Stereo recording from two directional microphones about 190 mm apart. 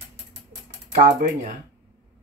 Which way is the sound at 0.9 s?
40° right (ahead or behind).